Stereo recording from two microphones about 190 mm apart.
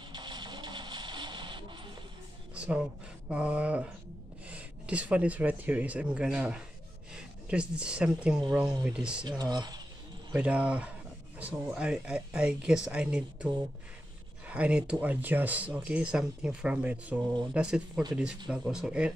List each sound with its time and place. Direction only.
0.1 s a sound: 25° right (ahead or behind)
2.5 s speech: 5° right (ahead or behind)
9.4 s speech: 20° right (ahead or behind)
10.3 s speech: 5° right (ahead or behind)
14.5 s speech: 5° right (ahead or behind)